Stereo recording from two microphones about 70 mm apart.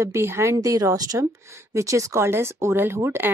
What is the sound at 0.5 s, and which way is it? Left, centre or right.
A woman's voice, right.